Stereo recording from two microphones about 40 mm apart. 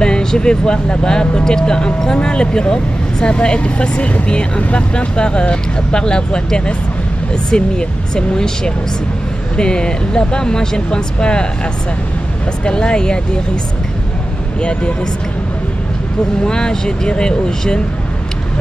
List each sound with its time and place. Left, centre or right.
0.0 s speech: centre
12.6 s speech: left
14.6 s speech: left
16.4 s speech: centre